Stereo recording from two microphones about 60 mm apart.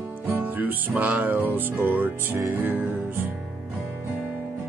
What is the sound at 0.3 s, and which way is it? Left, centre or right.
Music, right.